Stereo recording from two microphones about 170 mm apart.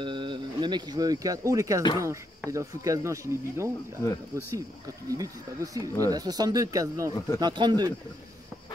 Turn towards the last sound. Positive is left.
turn(degrees=-25)  # may be behind; listen again after turning